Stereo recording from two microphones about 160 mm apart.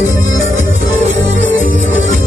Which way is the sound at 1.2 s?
55° left (ahead or behind).